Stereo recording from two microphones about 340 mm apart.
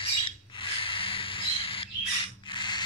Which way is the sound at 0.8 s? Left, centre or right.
Centre.